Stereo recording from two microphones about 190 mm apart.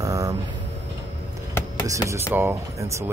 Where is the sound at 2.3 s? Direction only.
10° right (ahead or behind).